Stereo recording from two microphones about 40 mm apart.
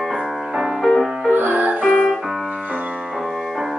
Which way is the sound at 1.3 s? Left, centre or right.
Right.